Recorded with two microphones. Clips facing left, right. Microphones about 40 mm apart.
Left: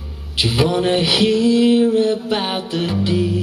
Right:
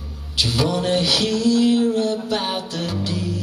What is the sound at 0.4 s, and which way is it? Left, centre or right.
Mantra, left.